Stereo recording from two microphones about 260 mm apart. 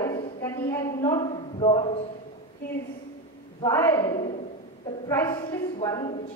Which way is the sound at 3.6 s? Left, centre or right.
Centre.